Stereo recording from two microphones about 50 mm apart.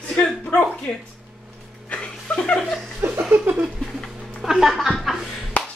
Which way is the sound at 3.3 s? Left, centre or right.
Right.